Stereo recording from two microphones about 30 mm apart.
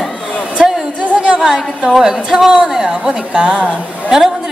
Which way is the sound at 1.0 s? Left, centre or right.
Right.